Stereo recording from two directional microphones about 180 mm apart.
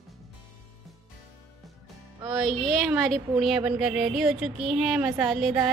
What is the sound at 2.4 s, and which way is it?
A woman's voice, centre (ahead or behind).